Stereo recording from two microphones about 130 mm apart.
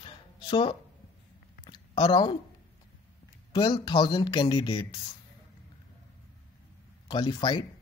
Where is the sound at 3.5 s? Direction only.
35° left (ahead or behind).